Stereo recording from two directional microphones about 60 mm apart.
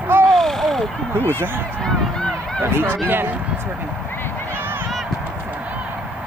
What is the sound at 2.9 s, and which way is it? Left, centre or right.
Speech, right.